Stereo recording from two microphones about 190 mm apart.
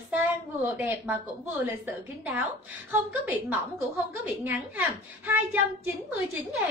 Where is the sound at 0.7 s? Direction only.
10° right (ahead or behind).